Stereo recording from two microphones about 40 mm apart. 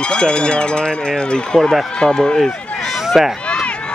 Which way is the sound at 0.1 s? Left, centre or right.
Left.